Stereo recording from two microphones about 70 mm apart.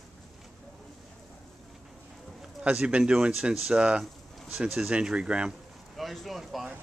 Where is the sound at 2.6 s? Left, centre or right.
Centre.